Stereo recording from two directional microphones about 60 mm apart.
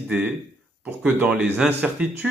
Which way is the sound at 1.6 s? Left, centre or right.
Centre.